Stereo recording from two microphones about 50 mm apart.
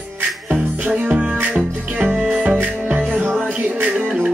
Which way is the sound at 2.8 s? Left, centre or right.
Right.